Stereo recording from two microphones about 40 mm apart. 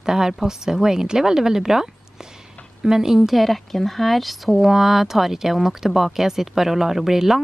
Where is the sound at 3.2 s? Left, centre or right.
Centre.